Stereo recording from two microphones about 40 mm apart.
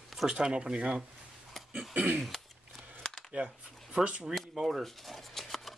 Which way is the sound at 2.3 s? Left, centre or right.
Centre.